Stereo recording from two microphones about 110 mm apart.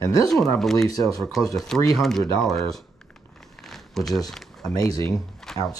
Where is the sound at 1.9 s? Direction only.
Centre (ahead or behind).